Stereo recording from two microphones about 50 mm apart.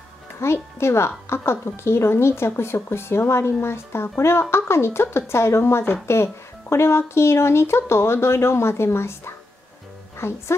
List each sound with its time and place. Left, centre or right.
0.4 s speech: left